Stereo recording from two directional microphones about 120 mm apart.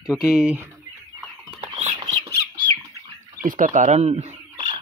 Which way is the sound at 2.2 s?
30° right (ahead or behind).